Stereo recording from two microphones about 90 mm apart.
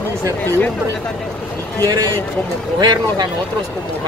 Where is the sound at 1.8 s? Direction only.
45° right (ahead or behind).